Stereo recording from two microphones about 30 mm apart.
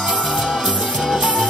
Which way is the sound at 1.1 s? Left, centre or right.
Centre.